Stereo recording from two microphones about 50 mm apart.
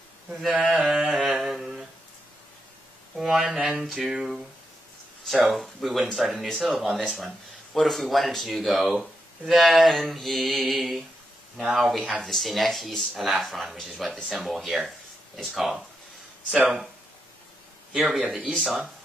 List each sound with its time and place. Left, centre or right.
0.3 s speech: centre
0.7 s a sound: centre
1.1 s humming: centre
3.2 s a sound: centre
5.5 s speech: centre
17.9 s speech: centre